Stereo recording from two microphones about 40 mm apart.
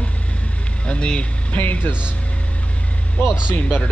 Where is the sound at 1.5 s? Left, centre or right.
Left.